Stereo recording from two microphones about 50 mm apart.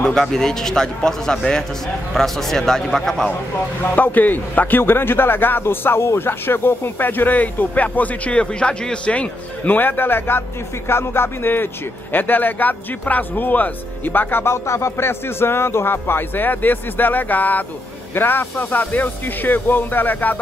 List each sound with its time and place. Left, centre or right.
0.0 s a man's voice: centre
3.9 s a man's voice: left
9.7 s a man's voice: left
14.4 s a man's voice: left